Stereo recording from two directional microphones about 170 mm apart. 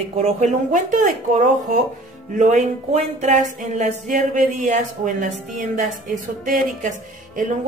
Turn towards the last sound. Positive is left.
turn(degrees=-50)  # may be behind; listen again after turning